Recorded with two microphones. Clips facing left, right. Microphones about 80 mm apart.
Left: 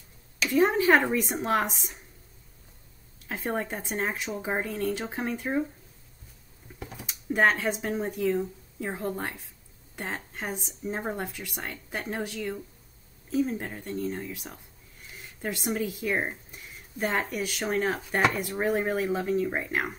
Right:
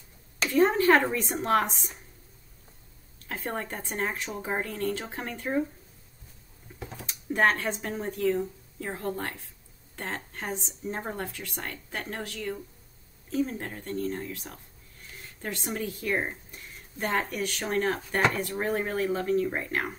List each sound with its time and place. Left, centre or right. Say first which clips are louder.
0.5 s speech: even; centre
3.2 s speech: left 3 dB; centre
7.0 s speech: left 1 dB; centre